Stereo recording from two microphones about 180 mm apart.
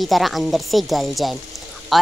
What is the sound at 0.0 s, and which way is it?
Speech, centre (ahead or behind).